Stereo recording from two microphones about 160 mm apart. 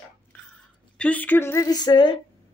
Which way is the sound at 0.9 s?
10° left (ahead or behind).